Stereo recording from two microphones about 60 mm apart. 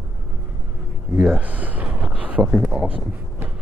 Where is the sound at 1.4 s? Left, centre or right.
Right.